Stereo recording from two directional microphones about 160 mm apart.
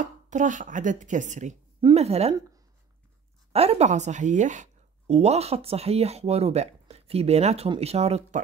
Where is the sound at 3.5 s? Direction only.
40° right (ahead or behind).